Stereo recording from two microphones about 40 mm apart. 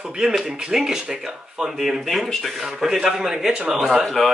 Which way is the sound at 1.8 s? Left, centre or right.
Centre.